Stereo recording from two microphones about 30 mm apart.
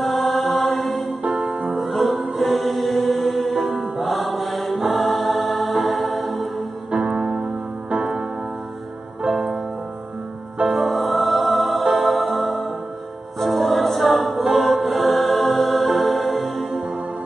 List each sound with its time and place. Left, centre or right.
0.0 s music: centre
1.2 s music: right
1.8 s music: centre
7.9 s music: right
10.7 s music: centre